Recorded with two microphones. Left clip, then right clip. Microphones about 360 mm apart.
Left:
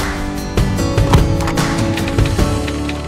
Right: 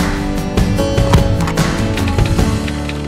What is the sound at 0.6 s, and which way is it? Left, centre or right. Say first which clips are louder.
Music: right 2 dB; centre.